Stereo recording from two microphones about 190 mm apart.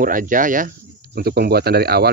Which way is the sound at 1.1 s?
55° right (ahead or behind).